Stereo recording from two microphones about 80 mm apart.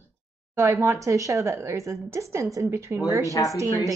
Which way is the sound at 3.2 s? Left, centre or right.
Left.